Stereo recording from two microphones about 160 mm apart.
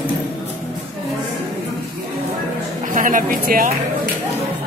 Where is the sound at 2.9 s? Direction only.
55° right (ahead or behind).